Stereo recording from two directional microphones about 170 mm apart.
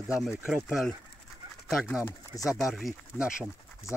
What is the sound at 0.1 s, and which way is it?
Speech, 5° right (ahead or behind).